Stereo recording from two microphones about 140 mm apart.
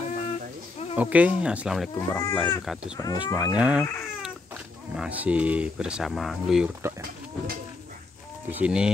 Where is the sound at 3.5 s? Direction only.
10° right (ahead or behind).